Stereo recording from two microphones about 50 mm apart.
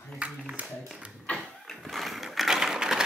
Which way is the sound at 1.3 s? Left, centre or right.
Left.